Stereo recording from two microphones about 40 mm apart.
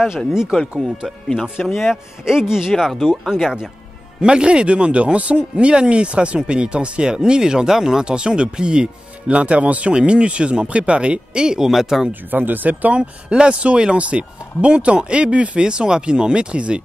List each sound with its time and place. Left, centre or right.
0.3 s speech: centre
1.4 s speech: centre
2.2 s speech: centre
2.7 s speech: centre
4.2 s speech: right
12.1 s speech: right